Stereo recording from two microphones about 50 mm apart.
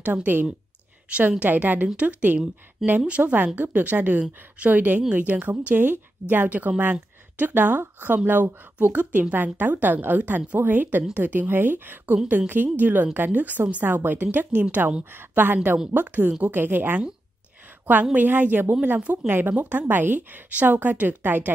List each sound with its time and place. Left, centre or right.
0.0 s a woman's voice: right
18.1 s a woman's voice: right